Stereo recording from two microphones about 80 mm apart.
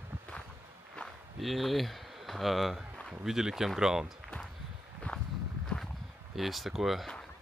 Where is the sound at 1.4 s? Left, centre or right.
Centre.